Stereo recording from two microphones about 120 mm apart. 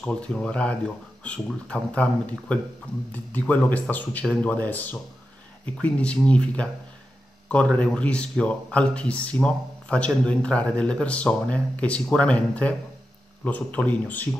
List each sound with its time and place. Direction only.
0.0 s speech: 10° left (ahead or behind)
7.7 s speech: 10° left (ahead or behind)